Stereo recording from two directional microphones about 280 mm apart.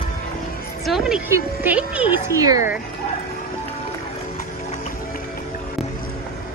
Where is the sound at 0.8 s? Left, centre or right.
Centre.